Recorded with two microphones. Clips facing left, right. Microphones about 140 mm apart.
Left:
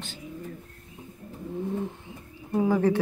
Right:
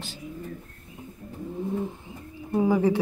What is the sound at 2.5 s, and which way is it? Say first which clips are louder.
Speech: right 1 dB; 10° right (ahead or behind).